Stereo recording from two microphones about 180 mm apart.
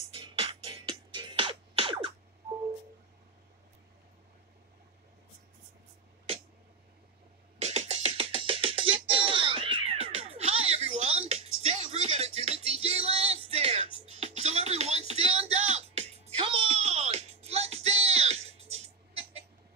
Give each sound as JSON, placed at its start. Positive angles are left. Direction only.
{"t": 0.2, "sound": "music", "side_deg": -30}
{"t": 7.6, "sound": "music", "side_deg": -40}